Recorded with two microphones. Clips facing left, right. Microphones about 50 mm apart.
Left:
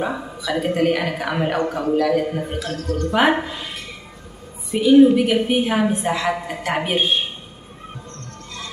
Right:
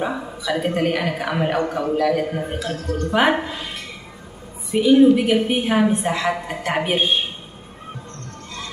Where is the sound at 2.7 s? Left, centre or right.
Right.